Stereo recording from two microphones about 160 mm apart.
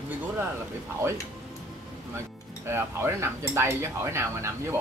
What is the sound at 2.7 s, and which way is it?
Speech, 15° right (ahead or behind).